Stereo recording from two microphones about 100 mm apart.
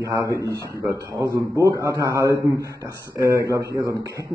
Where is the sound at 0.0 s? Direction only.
35° right (ahead or behind).